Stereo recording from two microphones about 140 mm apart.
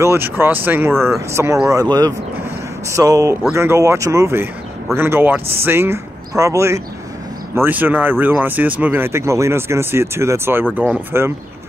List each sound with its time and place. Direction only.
0.0 s speech: 20° right (ahead or behind)